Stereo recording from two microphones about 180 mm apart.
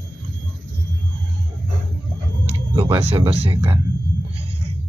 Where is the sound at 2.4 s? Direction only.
30° right (ahead or behind).